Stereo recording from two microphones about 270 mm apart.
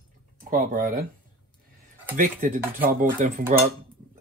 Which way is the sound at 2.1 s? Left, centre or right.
Right.